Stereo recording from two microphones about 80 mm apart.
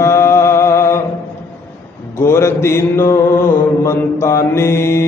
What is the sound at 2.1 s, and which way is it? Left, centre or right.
Mantra, left.